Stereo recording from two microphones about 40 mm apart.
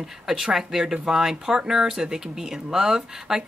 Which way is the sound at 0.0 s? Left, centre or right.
Centre.